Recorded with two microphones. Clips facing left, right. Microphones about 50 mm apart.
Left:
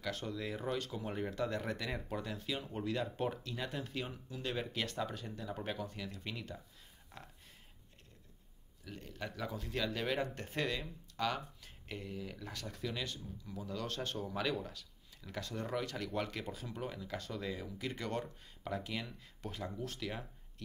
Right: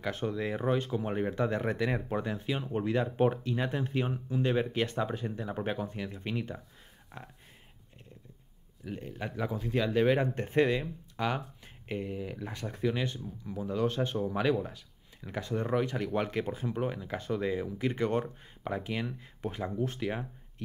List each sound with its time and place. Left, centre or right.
0.0 s speech: right
8.8 s speech: right